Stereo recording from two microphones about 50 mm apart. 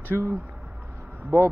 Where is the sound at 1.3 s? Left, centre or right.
Right.